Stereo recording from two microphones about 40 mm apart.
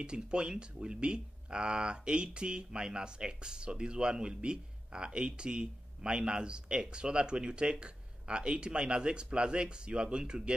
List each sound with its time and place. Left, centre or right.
0.0 s speech: right